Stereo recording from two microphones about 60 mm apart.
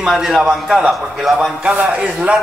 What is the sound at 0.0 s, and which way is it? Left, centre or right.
A man's voice, centre.